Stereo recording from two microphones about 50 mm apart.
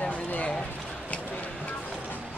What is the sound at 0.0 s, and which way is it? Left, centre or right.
Run, left.